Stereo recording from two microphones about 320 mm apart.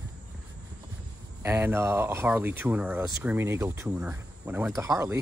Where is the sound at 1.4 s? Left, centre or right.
Centre.